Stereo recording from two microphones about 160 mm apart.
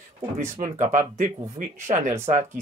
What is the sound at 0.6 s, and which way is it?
Speech, 50° right (ahead or behind).